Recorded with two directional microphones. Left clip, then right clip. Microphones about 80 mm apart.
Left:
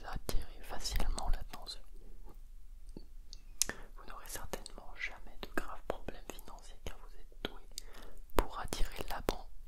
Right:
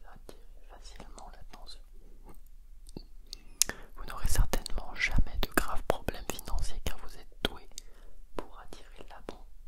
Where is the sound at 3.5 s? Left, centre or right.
Centre.